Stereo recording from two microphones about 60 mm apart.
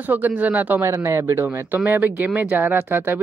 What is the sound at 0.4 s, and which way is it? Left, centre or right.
Speech, right.